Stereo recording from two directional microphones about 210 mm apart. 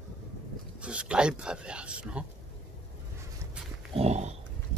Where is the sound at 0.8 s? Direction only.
5° right (ahead or behind).